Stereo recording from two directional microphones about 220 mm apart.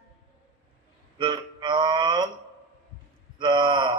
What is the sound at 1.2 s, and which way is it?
Music, 20° right (ahead or behind).